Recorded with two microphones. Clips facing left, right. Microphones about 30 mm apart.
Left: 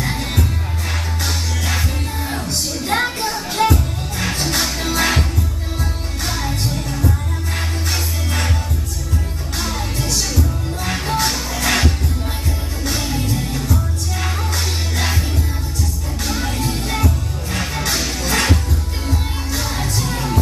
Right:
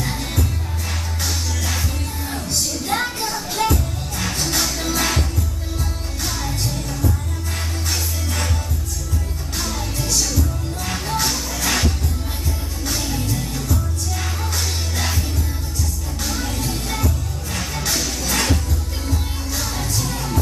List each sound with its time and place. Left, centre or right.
0.0 s music: left
6.2 s music: left
9.6 s music: centre
16.3 s music: left